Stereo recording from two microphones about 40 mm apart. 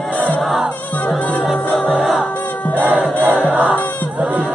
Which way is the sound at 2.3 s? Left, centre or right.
Left.